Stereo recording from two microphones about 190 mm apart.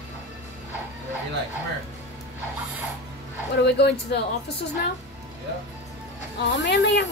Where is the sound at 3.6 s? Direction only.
60° left (ahead or behind).